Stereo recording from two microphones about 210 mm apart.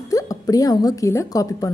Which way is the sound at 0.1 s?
15° left (ahead or behind).